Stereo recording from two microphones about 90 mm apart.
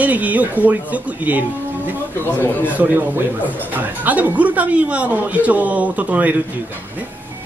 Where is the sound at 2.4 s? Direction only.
20° left (ahead or behind).